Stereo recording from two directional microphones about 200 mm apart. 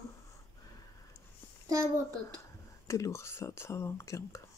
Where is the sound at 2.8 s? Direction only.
15° left (ahead or behind).